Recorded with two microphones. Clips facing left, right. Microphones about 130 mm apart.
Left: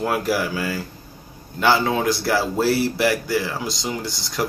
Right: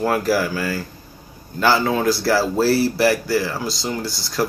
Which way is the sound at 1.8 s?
20° left (ahead or behind).